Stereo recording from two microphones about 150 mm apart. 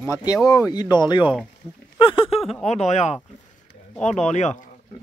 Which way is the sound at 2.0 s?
35° left (ahead or behind).